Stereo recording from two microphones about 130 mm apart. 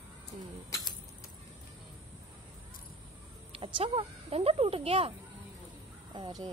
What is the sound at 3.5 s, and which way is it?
Speech, 45° right (ahead or behind).